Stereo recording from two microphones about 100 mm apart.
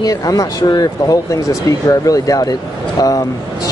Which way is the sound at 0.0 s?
40° left (ahead or behind).